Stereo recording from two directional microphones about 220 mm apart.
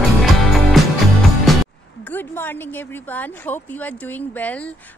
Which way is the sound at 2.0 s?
10° left (ahead or behind).